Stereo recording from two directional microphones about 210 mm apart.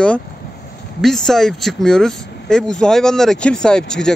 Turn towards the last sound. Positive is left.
turn(degrees=5)  # may be behind; listen again after turning